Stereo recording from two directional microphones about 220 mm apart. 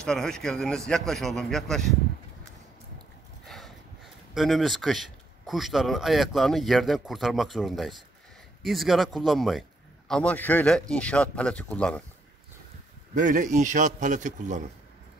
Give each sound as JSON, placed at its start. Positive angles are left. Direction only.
{"t": 0.0, "sound": "a man's voice", "side_deg": 5}
{"t": 3.4, "sound": "a sound", "side_deg": 0}
{"t": 4.3, "sound": "a man's voice", "side_deg": 0}
{"t": 13.1, "sound": "a man's voice", "side_deg": -35}